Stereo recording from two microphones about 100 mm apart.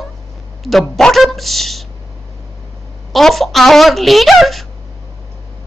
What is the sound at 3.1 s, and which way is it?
A woman's voice, centre (ahead or behind).